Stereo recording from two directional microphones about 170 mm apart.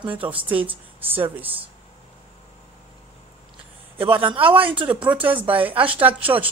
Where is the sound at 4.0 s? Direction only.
30° right (ahead or behind).